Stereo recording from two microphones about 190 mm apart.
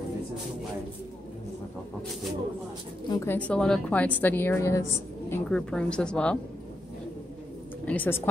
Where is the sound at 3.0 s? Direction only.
20° left (ahead or behind).